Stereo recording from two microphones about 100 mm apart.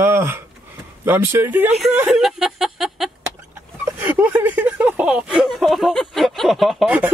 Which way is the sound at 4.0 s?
15° right (ahead or behind).